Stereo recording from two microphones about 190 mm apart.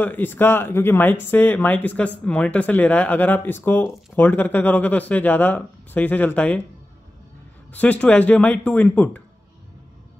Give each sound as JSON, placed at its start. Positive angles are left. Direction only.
{"t": 0.0, "sound": "speech", "side_deg": 10}
{"t": 7.8, "sound": "speech", "side_deg": 10}